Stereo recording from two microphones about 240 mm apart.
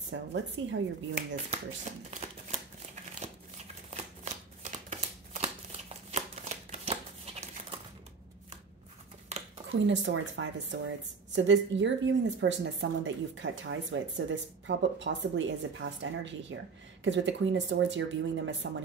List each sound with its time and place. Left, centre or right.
0.1 s speech: right
1.1 s speech: right
3.2 s shuffling cards: right
9.7 s speech: right